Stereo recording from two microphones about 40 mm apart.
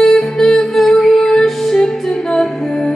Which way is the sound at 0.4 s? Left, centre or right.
Centre.